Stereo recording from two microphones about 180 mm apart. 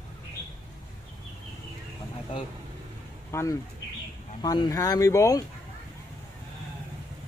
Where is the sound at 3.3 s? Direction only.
15° left (ahead or behind).